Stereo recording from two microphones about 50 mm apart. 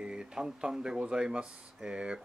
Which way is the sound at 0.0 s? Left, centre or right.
Centre.